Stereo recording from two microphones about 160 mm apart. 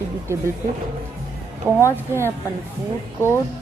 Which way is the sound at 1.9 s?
15° right (ahead or behind).